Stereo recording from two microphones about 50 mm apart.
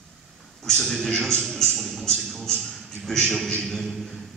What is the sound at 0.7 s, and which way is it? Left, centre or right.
A man's voice, centre.